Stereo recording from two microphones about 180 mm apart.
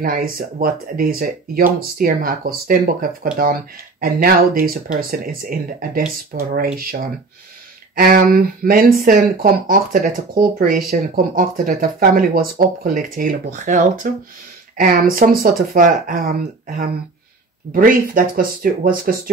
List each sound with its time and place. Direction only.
0.0 s speech: 50° right (ahead or behind)